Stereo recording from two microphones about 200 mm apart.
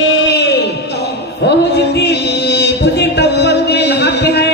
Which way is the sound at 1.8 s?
60° left (ahead or behind).